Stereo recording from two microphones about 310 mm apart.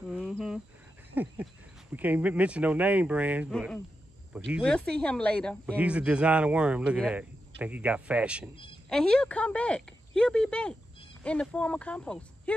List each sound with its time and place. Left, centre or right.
0.0 s cricket: centre
1.1 s speech: centre